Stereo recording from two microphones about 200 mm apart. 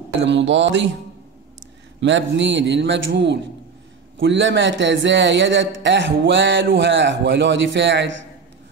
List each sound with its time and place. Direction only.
0.2 s a man's voice: 65° right (ahead or behind)
2.0 s a man's voice: 65° right (ahead or behind)